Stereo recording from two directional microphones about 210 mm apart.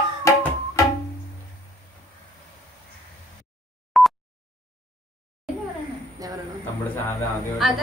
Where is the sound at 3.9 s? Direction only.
Centre (ahead or behind).